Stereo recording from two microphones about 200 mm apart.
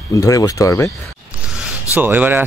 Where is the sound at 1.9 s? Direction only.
10° right (ahead or behind).